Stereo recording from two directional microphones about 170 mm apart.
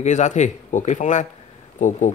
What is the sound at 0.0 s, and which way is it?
Speech, 45° left (ahead or behind).